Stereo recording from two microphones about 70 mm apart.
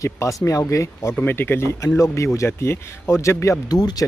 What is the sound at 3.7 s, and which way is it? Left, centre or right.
Speech, left.